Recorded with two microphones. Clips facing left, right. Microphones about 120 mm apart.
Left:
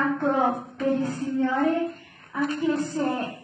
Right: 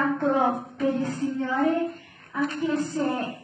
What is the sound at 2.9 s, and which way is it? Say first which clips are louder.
Speech: even; centre (ahead or behind).